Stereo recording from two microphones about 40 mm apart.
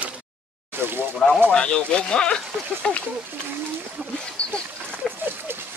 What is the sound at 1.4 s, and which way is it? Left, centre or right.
Speech, left.